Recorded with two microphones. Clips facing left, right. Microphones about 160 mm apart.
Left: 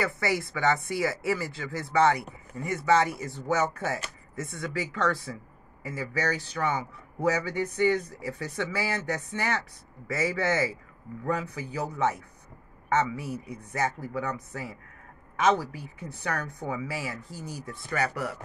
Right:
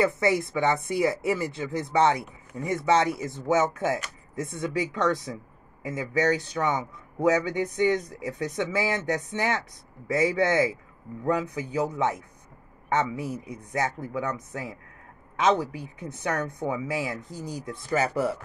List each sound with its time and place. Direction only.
0.0 s speech: 20° right (ahead or behind)
13.7 s speech: 15° right (ahead or behind)